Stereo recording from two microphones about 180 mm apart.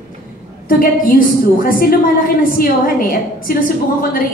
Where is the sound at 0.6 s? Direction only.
50° left (ahead or behind).